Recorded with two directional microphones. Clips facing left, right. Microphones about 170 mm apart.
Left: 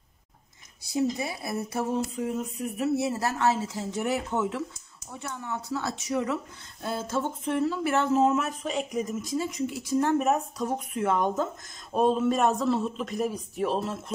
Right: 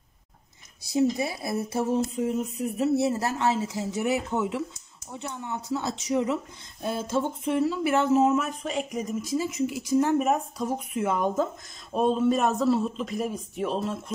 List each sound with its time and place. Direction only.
0.9 s speech: 25° right (ahead or behind)
8.3 s speech: centre (ahead or behind)